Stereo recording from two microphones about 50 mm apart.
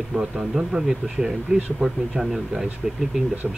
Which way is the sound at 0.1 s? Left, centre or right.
Centre.